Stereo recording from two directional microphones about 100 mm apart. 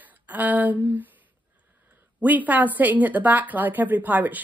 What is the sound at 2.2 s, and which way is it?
A woman's voice, 15° right (ahead or behind).